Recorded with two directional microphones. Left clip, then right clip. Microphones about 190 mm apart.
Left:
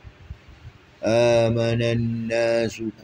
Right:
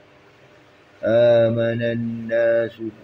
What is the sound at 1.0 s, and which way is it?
Speech, 35° left (ahead or behind).